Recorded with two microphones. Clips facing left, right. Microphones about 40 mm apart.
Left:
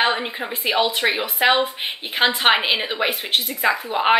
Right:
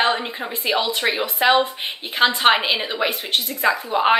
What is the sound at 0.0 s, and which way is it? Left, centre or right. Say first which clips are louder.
A woman's voice: even; centre.